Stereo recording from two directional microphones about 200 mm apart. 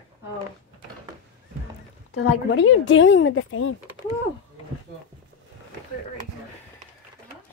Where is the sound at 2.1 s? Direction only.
65° left (ahead or behind).